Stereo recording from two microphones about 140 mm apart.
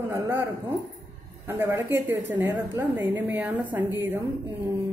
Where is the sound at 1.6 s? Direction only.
15° right (ahead or behind).